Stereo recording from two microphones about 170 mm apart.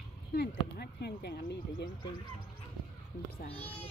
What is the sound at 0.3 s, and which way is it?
Speech, 70° left (ahead or behind).